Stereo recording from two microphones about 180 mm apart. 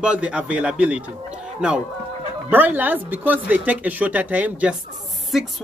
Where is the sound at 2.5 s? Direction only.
10° right (ahead or behind).